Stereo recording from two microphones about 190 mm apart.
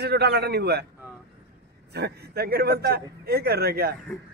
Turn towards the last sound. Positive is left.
turn(degrees=-55)  # may be behind; listen again after turning